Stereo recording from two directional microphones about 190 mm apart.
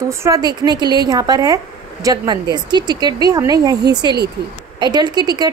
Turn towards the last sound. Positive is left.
turn(degrees=-20)  # may be behind; listen again after turning